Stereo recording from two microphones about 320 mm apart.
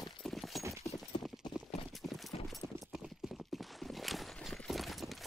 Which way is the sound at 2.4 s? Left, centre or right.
Centre.